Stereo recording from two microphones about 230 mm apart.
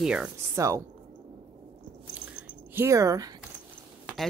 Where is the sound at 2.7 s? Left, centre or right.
Centre.